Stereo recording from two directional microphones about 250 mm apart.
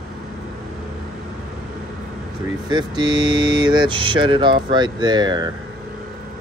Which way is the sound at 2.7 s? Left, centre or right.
Centre.